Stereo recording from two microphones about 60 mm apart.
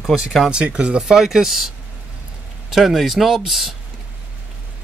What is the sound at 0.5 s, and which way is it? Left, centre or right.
Speech, centre.